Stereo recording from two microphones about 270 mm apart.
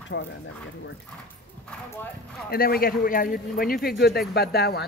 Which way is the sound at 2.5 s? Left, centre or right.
Left.